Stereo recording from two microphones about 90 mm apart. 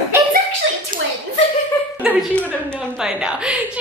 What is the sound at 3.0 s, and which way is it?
Speech, 10° right (ahead or behind).